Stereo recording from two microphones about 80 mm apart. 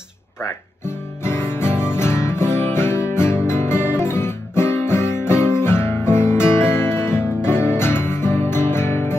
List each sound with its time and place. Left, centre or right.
1.2 s music: left